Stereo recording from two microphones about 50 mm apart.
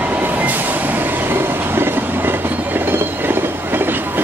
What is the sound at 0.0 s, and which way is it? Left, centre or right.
Train, right.